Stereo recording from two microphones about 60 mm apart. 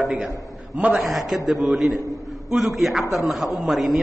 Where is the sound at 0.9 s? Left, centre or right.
Centre.